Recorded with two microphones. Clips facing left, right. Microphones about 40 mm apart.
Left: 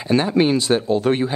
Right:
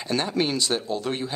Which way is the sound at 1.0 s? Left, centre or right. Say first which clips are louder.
Left 10 dB; left.